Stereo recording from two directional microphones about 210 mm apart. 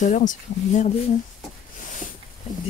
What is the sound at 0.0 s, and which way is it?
Speech, 40° left (ahead or behind).